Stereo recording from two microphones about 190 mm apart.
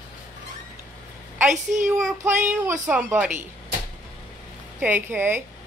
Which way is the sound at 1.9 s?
Centre (ahead or behind).